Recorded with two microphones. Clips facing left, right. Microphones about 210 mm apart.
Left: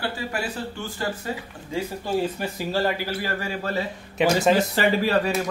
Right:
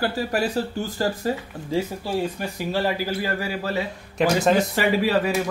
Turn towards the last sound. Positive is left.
turn(degrees=-5)  # may be behind; listen again after turning